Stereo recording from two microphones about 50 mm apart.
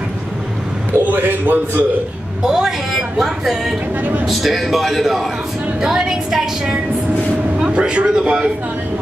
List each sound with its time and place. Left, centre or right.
1.0 s a man's voice: right
2.4 s a woman's voice: centre
2.9 s speech: centre
3.9 s a man's voice: right
4.3 s a man's voice: centre
5.8 s a woman's voice: centre